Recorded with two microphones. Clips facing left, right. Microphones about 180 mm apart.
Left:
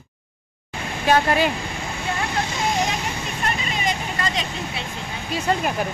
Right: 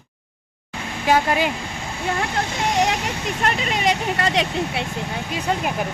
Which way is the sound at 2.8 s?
70° right (ahead or behind).